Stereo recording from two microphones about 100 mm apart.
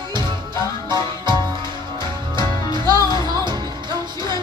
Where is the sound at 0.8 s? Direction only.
50° right (ahead or behind).